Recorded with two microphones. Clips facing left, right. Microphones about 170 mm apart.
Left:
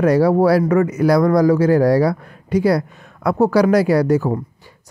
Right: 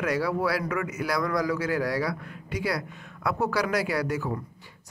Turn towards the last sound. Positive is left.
turn(degrees=40)  # may be behind; listen again after turning